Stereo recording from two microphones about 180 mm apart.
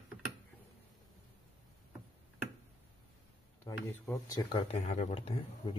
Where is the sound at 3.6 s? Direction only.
20° left (ahead or behind).